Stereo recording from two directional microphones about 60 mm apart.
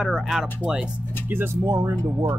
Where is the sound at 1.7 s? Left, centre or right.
Right.